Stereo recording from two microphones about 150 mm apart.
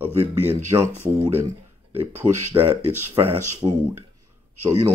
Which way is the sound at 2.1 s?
15° right (ahead or behind).